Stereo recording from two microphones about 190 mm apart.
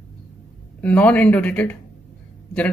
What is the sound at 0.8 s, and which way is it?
Speech, 10° left (ahead or behind).